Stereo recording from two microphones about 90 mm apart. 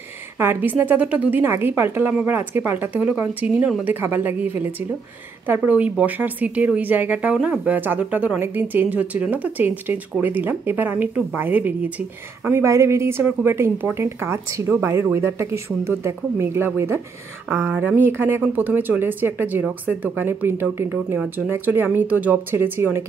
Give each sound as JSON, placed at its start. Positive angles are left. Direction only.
{"t": 0.4, "sound": "a woman's voice", "side_deg": -25}
{"t": 21.5, "sound": "a woman's voice", "side_deg": -20}